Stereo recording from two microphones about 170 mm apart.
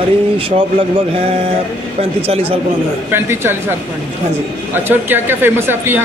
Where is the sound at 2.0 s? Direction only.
35° right (ahead or behind).